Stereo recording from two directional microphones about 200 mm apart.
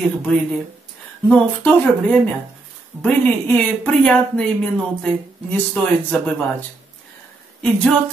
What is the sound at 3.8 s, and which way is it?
Speech, 5° left (ahead or behind).